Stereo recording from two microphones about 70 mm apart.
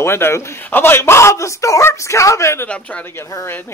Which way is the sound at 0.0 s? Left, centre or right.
Left.